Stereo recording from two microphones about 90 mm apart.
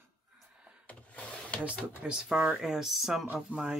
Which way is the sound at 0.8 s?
15° left (ahead or behind).